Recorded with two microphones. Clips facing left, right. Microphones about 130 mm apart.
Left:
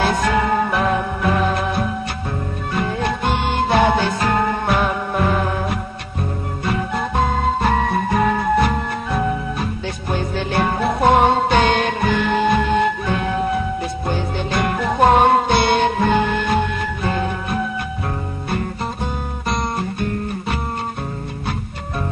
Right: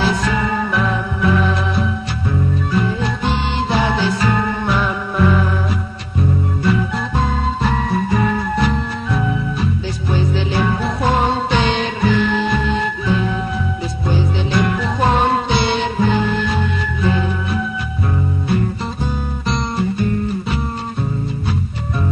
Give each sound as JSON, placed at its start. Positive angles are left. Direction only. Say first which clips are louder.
{"t": 0.0, "sound": "music", "louder": "left 1 dB", "side_deg": 50}
{"t": 7.6, "sound": "music", "louder": "left 1 dB", "side_deg": 50}